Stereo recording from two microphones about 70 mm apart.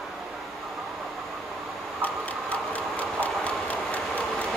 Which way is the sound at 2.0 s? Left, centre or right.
Left.